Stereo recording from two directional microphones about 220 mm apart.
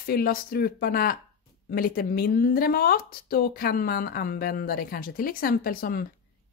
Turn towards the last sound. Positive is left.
turn(degrees=40)  # may be behind; listen again after turning